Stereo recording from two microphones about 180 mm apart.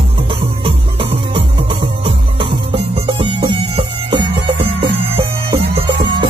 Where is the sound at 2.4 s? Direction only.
30° right (ahead or behind).